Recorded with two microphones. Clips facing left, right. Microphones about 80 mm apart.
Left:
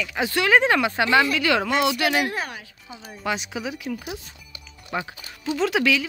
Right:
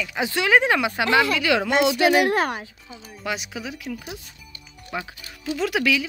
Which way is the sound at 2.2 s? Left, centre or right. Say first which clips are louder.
Right 7 dB; right.